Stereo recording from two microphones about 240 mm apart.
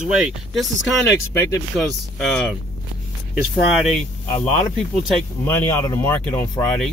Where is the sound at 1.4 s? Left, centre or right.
Centre.